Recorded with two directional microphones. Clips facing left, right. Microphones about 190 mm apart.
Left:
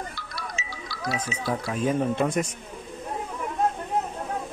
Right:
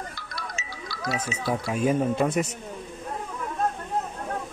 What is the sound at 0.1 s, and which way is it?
Music, 50° right (ahead or behind).